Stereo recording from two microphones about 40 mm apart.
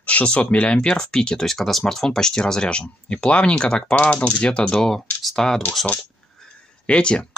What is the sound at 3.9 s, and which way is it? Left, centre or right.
Speech, left.